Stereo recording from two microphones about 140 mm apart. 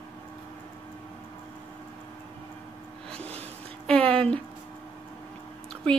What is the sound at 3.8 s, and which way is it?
Speech, 5° left (ahead or behind).